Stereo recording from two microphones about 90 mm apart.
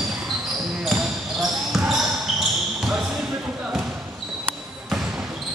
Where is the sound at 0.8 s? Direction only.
5° right (ahead or behind).